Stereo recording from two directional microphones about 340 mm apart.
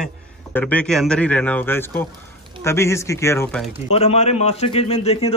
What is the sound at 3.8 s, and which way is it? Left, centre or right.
Speech, centre.